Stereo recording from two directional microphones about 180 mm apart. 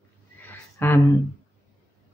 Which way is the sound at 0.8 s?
15° left (ahead or behind).